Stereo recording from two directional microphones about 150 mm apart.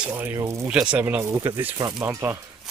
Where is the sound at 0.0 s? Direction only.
10° right (ahead or behind).